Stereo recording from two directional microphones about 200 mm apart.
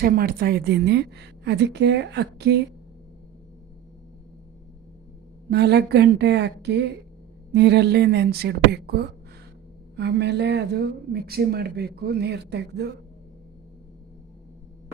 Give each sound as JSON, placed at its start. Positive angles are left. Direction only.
{"t": 0.0, "sound": "a woman's voice", "side_deg": -50}
{"t": 5.5, "sound": "a woman's voice", "side_deg": -55}